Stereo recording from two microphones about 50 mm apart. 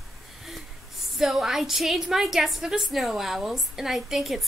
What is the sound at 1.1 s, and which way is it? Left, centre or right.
A woman's voice, centre.